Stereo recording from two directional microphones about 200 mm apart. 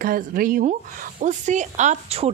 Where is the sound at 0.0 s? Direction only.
45° right (ahead or behind).